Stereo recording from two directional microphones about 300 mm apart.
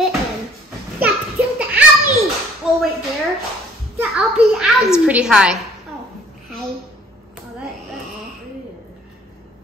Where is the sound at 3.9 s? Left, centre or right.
Centre.